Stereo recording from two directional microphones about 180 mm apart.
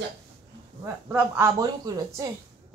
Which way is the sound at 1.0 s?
10° right (ahead or behind).